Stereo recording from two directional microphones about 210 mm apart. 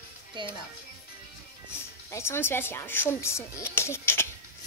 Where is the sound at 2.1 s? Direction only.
10° left (ahead or behind).